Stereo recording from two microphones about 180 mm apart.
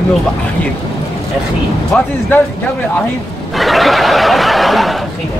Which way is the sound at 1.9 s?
5° left (ahead or behind).